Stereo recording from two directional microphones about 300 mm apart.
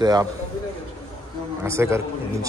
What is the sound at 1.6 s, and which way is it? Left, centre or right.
Speech, centre.